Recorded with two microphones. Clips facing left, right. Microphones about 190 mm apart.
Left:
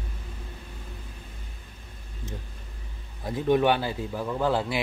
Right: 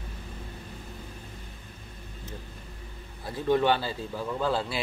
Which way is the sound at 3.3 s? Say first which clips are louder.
Left 2 dB; 15° left (ahead or behind).